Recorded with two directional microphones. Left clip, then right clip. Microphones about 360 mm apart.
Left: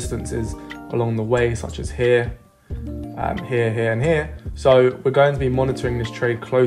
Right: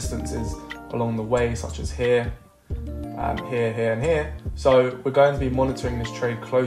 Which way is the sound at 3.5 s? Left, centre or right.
Left.